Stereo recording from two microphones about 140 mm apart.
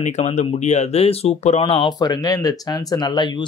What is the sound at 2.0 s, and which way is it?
Speech, 25° left (ahead or behind).